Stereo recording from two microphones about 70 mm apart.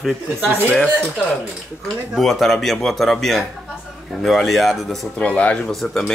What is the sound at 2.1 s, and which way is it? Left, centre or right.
Speech, centre.